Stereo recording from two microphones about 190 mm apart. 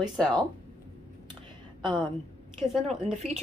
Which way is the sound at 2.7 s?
Centre (ahead or behind).